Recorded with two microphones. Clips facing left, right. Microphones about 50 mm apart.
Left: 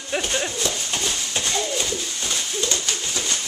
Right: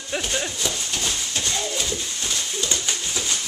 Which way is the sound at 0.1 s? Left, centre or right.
Centre.